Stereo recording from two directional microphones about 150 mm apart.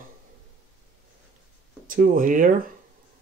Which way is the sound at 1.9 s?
65° right (ahead or behind).